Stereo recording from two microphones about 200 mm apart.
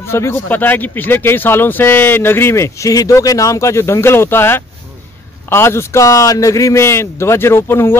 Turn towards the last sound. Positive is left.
turn(degrees=10)  # may be behind; listen again after turning